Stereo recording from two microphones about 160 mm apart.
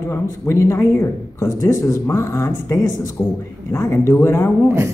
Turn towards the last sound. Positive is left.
turn(degrees=15)  # may be behind; listen again after turning